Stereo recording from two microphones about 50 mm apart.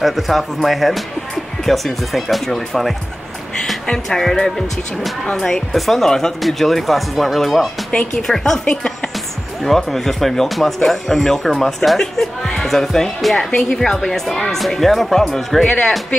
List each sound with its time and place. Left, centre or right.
0.0 s speech: centre